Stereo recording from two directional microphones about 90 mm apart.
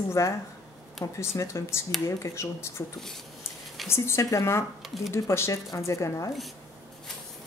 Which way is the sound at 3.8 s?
30° left (ahead or behind).